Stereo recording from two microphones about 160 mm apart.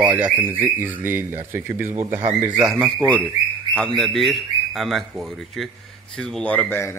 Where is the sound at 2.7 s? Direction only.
5° left (ahead or behind).